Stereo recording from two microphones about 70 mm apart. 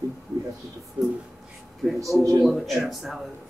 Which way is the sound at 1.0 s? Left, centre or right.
Centre.